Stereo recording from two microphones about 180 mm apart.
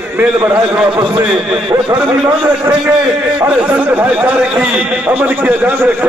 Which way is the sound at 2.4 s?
5° right (ahead or behind).